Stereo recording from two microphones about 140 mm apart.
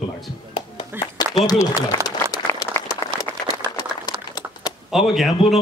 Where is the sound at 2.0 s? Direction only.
25° left (ahead or behind).